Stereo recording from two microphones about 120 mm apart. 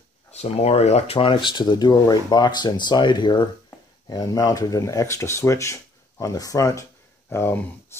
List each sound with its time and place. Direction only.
0.3 s speech: 60° left (ahead or behind); by 3.4 s 40° left (ahead or behind)
4.1 s speech: 30° left (ahead or behind)